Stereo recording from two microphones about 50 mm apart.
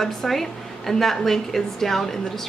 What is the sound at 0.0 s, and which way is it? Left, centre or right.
A woman's voice, centre.